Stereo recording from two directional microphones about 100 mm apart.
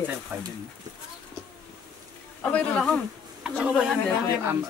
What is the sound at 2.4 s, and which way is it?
Speech, 15° left (ahead or behind).